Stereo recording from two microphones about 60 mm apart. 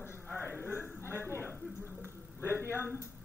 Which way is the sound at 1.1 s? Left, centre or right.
Right.